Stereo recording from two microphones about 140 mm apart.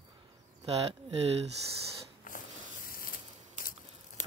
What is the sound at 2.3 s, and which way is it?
Snort, 75° left (ahead or behind).